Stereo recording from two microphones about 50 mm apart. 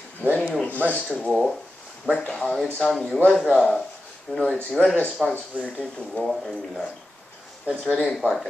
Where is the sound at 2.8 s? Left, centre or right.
Centre.